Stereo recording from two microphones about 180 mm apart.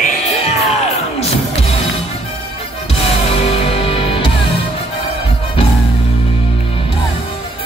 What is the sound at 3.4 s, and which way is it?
Music, 30° left (ahead or behind).